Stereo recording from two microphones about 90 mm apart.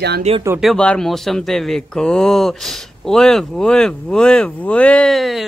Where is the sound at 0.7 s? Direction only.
10° left (ahead or behind).